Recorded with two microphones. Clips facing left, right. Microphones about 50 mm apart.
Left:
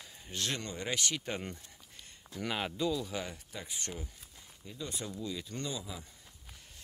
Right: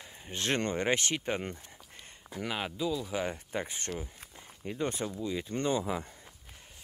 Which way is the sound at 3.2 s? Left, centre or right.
Right.